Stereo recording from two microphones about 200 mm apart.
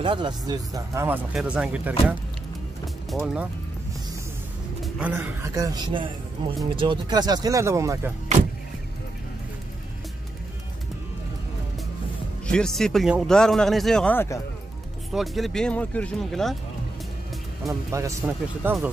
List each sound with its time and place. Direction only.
0.0 s speech: 25° right (ahead or behind); by 3.4 s 5° right (ahead or behind)
4.8 s speech: 5° right (ahead or behind)
12.4 s speech: 5° left (ahead or behind)
15.1 s speech: centre (ahead or behind)
18.2 s speech: 5° right (ahead or behind)